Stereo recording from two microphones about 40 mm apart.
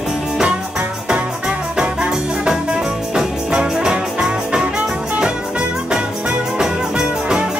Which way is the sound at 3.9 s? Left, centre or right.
Right.